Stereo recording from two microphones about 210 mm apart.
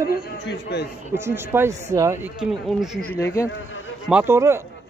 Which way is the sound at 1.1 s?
10° right (ahead or behind).